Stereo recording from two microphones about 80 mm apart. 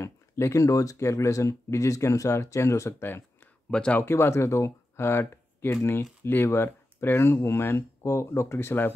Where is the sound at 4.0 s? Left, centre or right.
Left.